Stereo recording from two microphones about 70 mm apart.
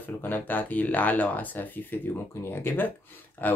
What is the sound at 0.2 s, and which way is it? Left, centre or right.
Speech, left.